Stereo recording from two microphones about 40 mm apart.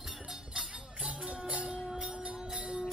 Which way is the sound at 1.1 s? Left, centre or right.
Right.